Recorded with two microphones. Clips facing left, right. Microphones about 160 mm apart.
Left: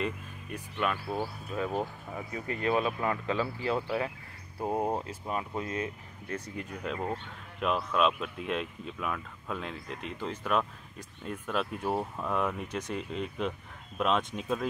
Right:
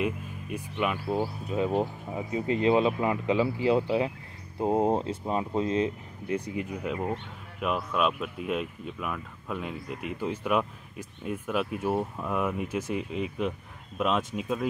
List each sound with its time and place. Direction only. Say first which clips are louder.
0.0 s speech: right 4 dB; 15° right (ahead or behind)
6.3 s speech: right 7 dB; 10° right (ahead or behind)